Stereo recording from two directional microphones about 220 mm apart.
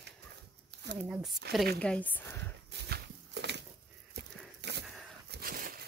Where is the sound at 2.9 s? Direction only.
50° right (ahead or behind).